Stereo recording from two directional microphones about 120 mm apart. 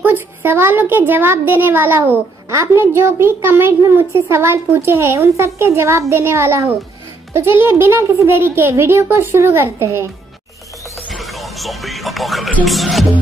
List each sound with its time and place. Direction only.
0.0 s a woman's voice: 20° right (ahead or behind)
11.1 s music: centre (ahead or behind)
12.6 s speech: centre (ahead or behind)